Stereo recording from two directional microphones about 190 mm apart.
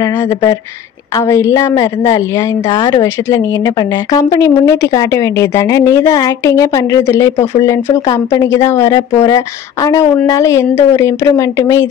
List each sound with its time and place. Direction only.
0.0 s a woman's voice: 20° left (ahead or behind)